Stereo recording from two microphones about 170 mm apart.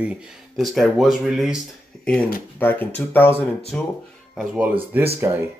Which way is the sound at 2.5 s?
10° left (ahead or behind).